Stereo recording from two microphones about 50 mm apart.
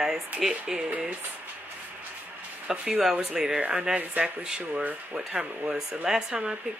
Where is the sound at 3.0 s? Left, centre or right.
Centre.